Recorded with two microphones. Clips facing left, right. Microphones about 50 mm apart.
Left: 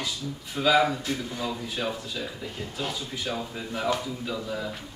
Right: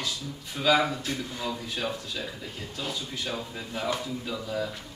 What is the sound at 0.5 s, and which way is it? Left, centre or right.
A man's voice, centre.